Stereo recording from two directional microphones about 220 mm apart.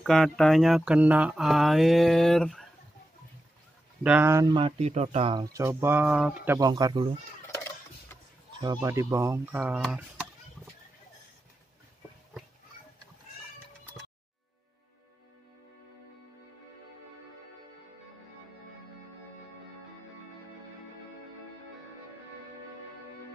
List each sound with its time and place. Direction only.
0.0 s speech: centre (ahead or behind)
4.0 s speech: 10° right (ahead or behind)
7.5 s a sound: 10° left (ahead or behind)
8.5 s speech: 15° right (ahead or behind)